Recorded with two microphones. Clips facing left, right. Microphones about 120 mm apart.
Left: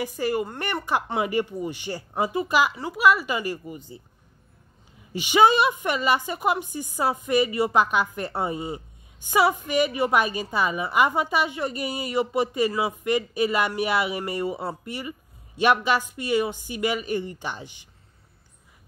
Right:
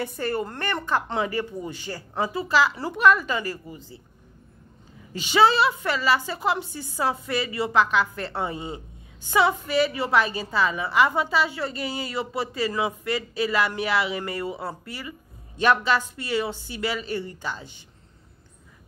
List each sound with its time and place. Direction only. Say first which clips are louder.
0.2 s a woman's voice: left 3 dB; 10° left (ahead or behind)
2.8 s a woman's voice: right 1 dB; 5° left (ahead or behind)
5.1 s a woman's voice: left 1 dB; 15° left (ahead or behind)
8.5 s speech: left 2 dB; 25° right (ahead or behind)
9.3 s a woman's voice: even; 15° left (ahead or behind)